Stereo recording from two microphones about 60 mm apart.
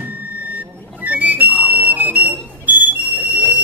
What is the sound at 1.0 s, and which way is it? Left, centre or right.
Whistle, right.